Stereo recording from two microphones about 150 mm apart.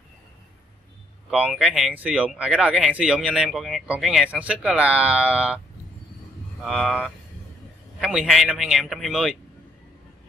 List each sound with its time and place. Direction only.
1.3 s speech: 5° right (ahead or behind)
6.6 s a man's voice: centre (ahead or behind)